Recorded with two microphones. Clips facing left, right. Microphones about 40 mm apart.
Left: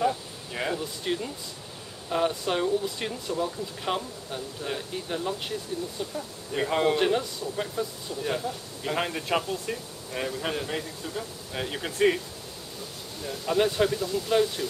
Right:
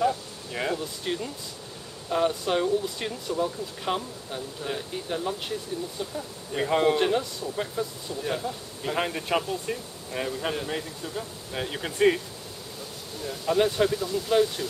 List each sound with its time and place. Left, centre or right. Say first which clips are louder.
0.0 s a sound: right 1 dB; centre
2.0 s speech: right 1 dB; centre
13.2 s speech: right 1 dB; centre